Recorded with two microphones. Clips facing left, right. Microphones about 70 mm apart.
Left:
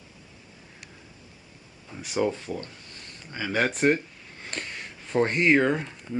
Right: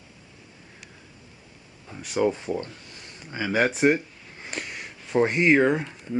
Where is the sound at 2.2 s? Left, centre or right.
Centre.